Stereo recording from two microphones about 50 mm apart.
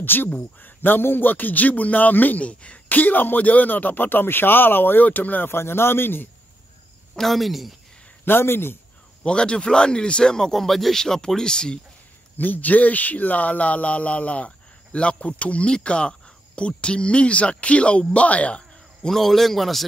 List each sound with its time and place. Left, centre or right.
0.0 s a man's voice: left
2.9 s a man's voice: left
5.0 s a man's voice: left
5.5 s speech: left
7.2 s a man's voice: centre
8.3 s speech: left
9.2 s speech: centre
12.4 s speech: left
19.0 s a man's voice: centre